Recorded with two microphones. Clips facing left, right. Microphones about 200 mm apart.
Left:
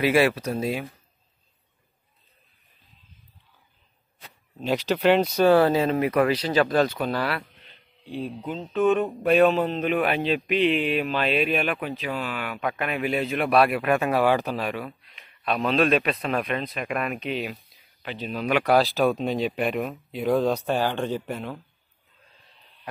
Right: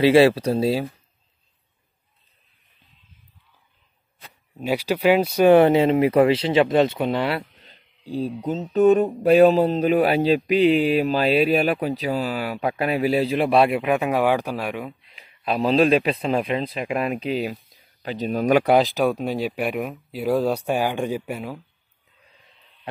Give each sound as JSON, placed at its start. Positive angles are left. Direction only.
{"t": 0.0, "sound": "speech", "side_deg": -30}
{"t": 4.6, "sound": "speech", "side_deg": -10}
{"t": 5.5, "sound": "speech", "side_deg": -25}
{"t": 7.6, "sound": "a sound", "side_deg": -40}
{"t": 8.7, "sound": "speech", "side_deg": -40}
{"t": 18.6, "sound": "speech", "side_deg": -20}